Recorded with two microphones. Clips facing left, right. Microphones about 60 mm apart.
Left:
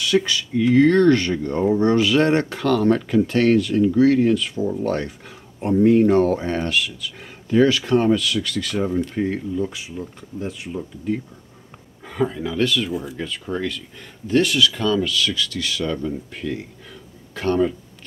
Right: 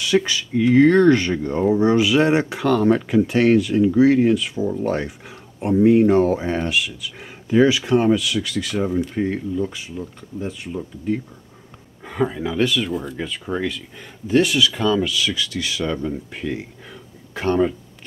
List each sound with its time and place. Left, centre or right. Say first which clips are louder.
0.0 s speech: even; centre
12.0 s speech: right 1 dB; centre
12.9 s speech: right 1 dB; centre
13.2 s speech: right 1 dB; centre